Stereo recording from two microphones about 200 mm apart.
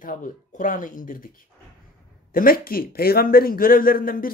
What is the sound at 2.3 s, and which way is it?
Speech, 45° left (ahead or behind).